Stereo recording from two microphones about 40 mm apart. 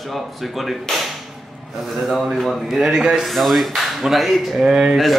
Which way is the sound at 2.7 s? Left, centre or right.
Centre.